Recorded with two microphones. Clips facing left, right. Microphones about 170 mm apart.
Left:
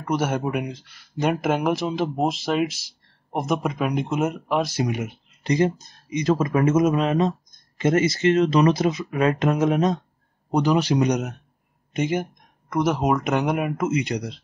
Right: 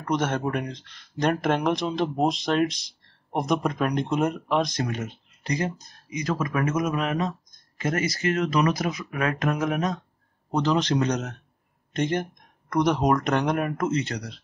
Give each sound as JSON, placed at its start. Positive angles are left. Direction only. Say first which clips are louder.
{"t": 0.0, "sound": "speech", "louder": "left 2 dB", "side_deg": 10}
{"t": 5.4, "sound": "speech", "louder": "left 7 dB", "side_deg": 25}
{"t": 10.5, "sound": "speech", "louder": "left 3 dB", "side_deg": 10}